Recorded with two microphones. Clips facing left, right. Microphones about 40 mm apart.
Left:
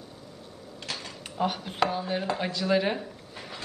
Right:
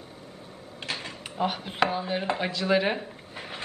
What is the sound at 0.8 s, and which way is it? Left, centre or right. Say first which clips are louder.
Speech: right 3 dB; right.